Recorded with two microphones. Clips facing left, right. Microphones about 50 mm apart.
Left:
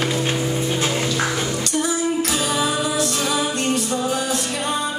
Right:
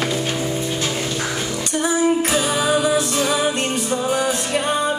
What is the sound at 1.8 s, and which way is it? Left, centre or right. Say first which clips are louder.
Music: right 5 dB; right.